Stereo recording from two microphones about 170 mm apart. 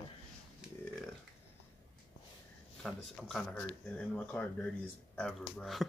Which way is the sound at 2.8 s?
Centre (ahead or behind).